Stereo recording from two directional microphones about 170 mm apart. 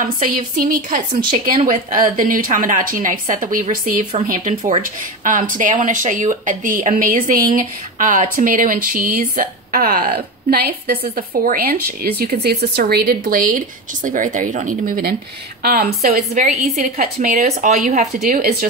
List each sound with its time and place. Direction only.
0.0 s speech: 50° right (ahead or behind)
4.3 s speech: 40° right (ahead or behind); by 12.1 s 60° right (ahead or behind)
12.2 s speech: 70° right (ahead or behind); by 18.0 s 45° right (ahead or behind)
18.2 s speech: 60° right (ahead or behind)